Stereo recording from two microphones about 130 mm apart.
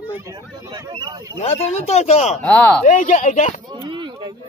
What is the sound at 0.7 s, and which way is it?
Speech, 35° right (ahead or behind).